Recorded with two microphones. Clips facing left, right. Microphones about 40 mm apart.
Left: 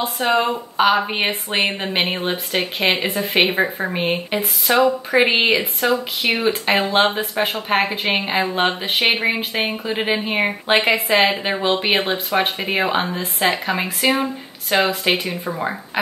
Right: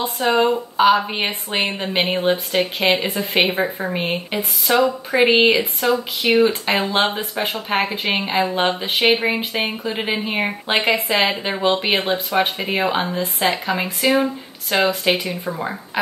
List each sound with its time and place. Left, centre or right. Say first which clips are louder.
0.2 s a woman's voice: right 2 dB; centre